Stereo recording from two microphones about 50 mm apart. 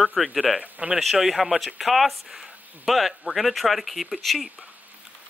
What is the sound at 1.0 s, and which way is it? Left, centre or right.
A man's voice, centre.